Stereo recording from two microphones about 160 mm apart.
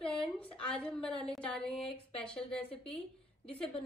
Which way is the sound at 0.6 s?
5° left (ahead or behind).